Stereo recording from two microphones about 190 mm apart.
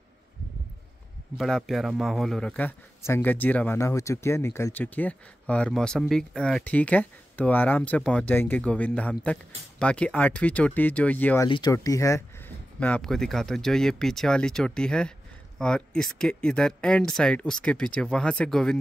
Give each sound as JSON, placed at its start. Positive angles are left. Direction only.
{"t": 1.4, "sound": "a man's voice", "side_deg": 0}
{"t": 11.4, "sound": "a man's voice", "side_deg": 25}
{"t": 12.8, "sound": "speech", "side_deg": 5}